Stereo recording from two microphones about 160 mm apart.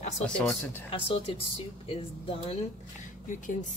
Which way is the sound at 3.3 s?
50° left (ahead or behind).